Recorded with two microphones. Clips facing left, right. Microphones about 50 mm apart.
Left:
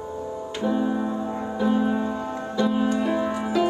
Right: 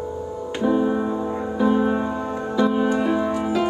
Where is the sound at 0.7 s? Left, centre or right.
Centre.